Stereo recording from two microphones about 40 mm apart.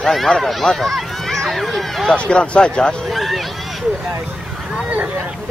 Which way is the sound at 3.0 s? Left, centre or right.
Centre.